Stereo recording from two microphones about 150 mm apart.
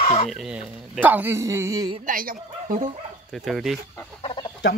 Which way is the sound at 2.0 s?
65° right (ahead or behind).